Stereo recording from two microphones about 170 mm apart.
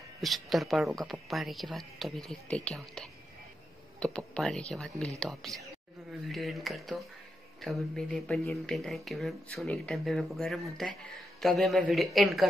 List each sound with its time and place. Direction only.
0.2 s speech: centre (ahead or behind)